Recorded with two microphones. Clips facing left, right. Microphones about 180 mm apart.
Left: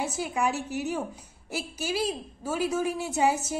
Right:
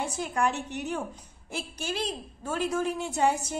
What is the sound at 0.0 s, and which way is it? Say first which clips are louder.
A woman's voice: even; 5° left (ahead or behind).